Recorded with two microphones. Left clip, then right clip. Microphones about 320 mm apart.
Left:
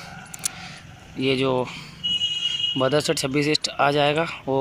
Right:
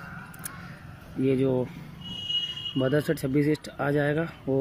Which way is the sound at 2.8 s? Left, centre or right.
Left.